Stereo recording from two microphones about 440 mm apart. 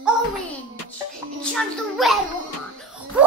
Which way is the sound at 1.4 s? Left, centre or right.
Centre.